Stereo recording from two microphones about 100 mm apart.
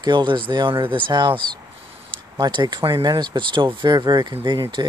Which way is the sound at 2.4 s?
50° right (ahead or behind).